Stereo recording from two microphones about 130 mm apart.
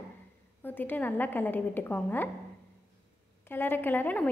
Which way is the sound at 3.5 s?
15° left (ahead or behind).